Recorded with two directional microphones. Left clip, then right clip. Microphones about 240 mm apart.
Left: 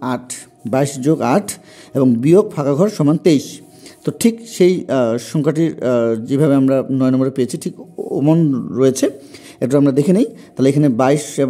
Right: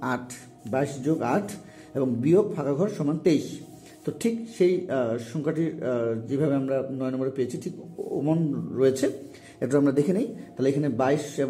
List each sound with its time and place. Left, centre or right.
0.7 s a man's voice: left